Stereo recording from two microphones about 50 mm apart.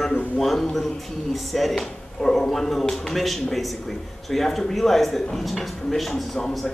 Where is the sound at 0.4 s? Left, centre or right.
Centre.